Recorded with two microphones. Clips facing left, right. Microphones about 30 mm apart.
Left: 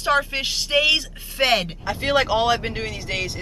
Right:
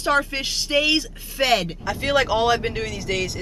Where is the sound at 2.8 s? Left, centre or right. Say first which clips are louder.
Right 2 dB; left.